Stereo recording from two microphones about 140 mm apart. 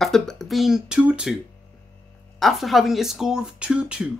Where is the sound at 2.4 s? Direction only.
Centre (ahead or behind).